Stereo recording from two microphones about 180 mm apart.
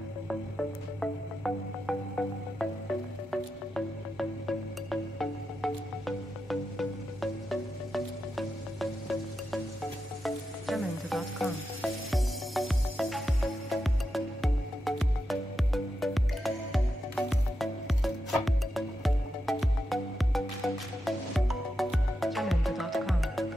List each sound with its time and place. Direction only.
1.4 s music: 5° left (ahead or behind)